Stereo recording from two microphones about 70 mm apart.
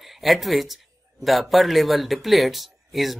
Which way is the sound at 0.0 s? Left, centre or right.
Centre.